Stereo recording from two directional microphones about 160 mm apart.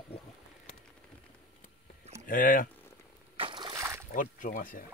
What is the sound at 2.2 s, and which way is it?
Speech, 55° left (ahead or behind).